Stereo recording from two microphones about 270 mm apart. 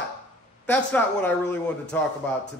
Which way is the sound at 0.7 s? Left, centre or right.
Centre.